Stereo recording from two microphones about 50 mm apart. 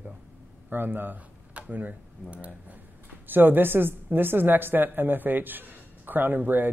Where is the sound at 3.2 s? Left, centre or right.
Right.